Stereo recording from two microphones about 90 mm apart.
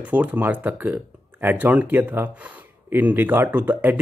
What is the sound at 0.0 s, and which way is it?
Speech, 20° right (ahead or behind).